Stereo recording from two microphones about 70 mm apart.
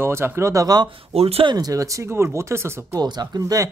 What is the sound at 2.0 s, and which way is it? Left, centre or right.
Speech, right.